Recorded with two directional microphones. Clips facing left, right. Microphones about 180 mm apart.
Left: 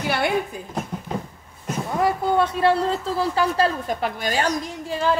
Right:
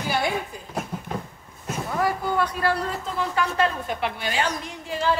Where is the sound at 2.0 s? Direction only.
25° left (ahead or behind); by 4.6 s 40° left (ahead or behind).